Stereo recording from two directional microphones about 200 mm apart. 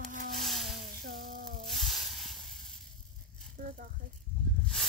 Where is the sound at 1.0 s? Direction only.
45° right (ahead or behind).